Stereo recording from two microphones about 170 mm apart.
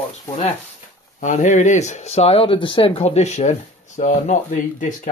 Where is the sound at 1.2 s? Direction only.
45° left (ahead or behind).